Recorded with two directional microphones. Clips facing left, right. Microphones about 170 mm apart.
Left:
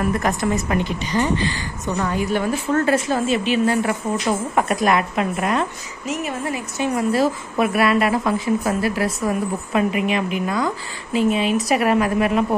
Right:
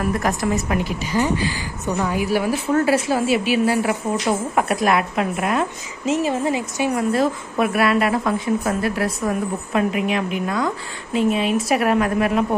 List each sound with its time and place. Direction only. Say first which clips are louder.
0.0 s a woman's voice: left 1 dB; centre (ahead or behind)
6.0 s a woman's voice: right 5 dB; 30° right (ahead or behind)
7.0 s a woman's voice: left 2 dB; centre (ahead or behind)